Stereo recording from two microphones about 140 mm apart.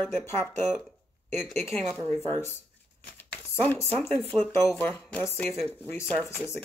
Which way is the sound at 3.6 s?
15° left (ahead or behind).